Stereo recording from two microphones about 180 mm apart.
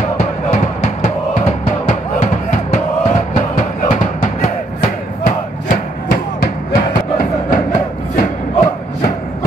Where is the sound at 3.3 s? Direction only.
45° left (ahead or behind).